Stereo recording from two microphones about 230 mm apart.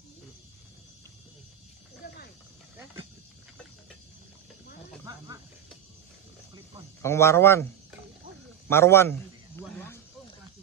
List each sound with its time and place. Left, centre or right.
2.0 s snake: left
7.0 s speech: centre
8.6 s speech: centre
9.6 s snake: centre